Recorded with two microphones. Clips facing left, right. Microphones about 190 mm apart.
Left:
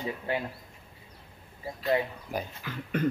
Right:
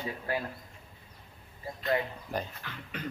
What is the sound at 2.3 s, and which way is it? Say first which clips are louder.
Speech: left 1 dB; 10° left (ahead or behind).